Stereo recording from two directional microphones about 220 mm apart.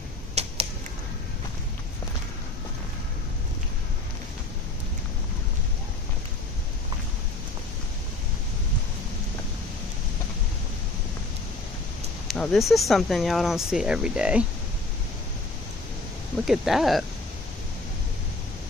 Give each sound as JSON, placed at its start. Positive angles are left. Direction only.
{"t": 0.3, "sound": "finger snapping", "side_deg": -30}
{"t": 12.3, "sound": "speech", "side_deg": 0}
{"t": 16.4, "sound": "speech", "side_deg": 0}